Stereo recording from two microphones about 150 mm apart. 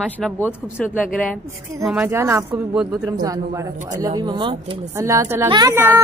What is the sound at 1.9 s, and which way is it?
A woman's voice, 10° right (ahead or behind).